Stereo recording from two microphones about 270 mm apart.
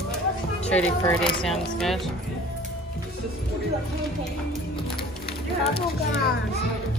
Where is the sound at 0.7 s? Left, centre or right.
Centre.